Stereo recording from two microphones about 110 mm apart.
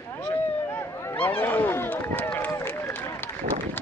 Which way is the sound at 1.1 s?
15° left (ahead or behind).